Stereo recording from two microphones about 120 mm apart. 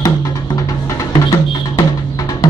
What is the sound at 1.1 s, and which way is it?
Music, 30° left (ahead or behind).